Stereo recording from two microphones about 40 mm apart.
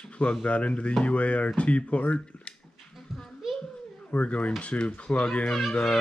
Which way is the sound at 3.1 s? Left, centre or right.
Centre.